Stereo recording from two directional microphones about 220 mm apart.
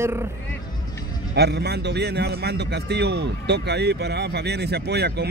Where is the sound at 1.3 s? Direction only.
50° right (ahead or behind).